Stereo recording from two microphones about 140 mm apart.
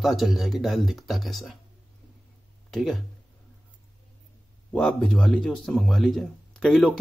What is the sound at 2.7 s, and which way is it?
Speech, centre (ahead or behind).